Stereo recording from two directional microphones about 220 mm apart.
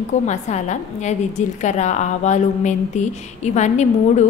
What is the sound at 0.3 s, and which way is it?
A woman's voice, 30° left (ahead or behind).